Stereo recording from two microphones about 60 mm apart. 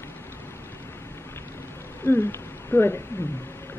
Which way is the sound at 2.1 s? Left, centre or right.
Left.